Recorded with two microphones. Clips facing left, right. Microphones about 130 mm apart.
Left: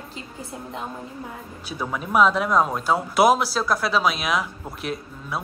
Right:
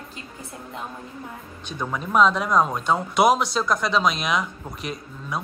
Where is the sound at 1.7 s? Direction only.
5° left (ahead or behind).